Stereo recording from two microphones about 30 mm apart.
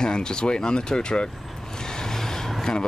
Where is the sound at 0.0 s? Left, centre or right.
Left.